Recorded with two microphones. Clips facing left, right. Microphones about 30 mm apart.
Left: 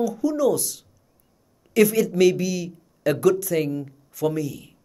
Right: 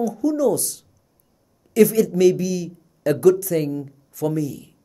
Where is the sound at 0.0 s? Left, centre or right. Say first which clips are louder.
Right 1 dB; left.